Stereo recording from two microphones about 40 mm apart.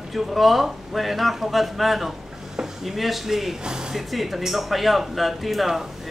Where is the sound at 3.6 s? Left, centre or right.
Centre.